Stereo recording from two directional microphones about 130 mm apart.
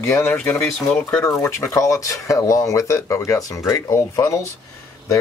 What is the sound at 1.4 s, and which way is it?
Speech, 25° left (ahead or behind).